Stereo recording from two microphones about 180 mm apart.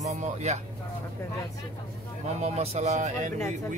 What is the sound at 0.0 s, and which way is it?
Speech, 40° right (ahead or behind).